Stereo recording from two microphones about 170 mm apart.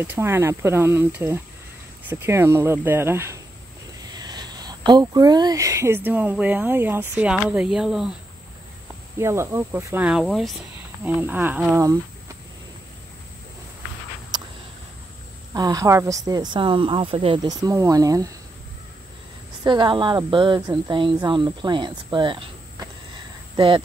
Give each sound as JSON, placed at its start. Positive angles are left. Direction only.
{"t": 0.0, "sound": "speech", "side_deg": -10}
{"t": 4.2, "sound": "a sound", "side_deg": -25}
{"t": 6.0, "sound": "speech", "side_deg": -10}
{"t": 9.2, "sound": "speech", "side_deg": -15}
{"t": 10.0, "sound": "speech", "side_deg": 0}
{"t": 11.1, "sound": "speech", "side_deg": -10}
{"t": 14.3, "sound": "a sound", "side_deg": -25}
{"t": 15.5, "sound": "speech", "side_deg": -20}
{"t": 19.6, "sound": "speech", "side_deg": -25}